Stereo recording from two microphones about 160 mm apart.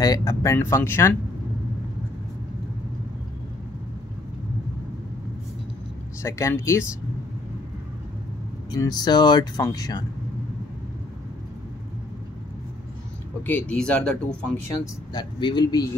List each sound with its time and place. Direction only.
0.0 s speech: 20° left (ahead or behind)
6.2 s speech: 15° left (ahead or behind)
8.7 s speech: 25° left (ahead or behind)
13.5 s speech: 10° left (ahead or behind)
15.1 s speech: 25° left (ahead or behind)